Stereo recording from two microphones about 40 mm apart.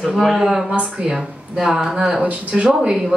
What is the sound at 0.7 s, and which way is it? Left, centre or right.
Speech, right.